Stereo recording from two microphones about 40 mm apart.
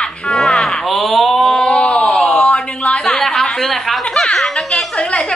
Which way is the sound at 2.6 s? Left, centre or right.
Left.